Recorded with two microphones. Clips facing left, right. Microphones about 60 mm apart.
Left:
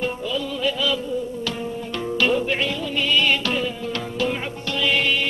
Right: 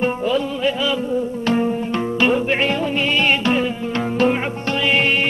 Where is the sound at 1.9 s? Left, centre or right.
Right.